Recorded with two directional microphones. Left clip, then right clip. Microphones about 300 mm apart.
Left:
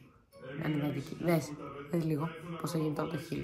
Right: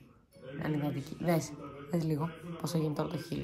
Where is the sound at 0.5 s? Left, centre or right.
Centre.